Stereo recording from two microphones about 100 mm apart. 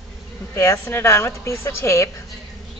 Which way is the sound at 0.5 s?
30° left (ahead or behind).